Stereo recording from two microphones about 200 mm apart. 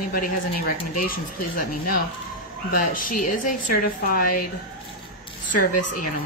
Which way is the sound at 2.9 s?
40° left (ahead or behind).